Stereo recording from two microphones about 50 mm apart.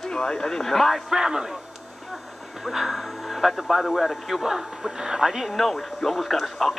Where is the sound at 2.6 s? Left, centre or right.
Centre.